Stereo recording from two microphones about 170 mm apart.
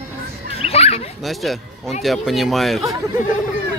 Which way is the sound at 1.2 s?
Centre (ahead or behind).